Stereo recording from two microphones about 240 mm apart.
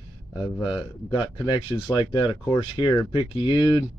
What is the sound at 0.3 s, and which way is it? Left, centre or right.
Speech, centre.